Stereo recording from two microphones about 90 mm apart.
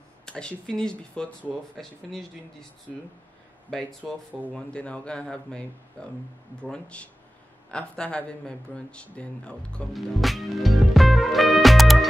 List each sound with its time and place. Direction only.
0.2 s speech: 10° left (ahead or behind)
4.0 s speech: 20° right (ahead or behind)
4.6 s speech: 10° left (ahead or behind)
9.9 s music: centre (ahead or behind)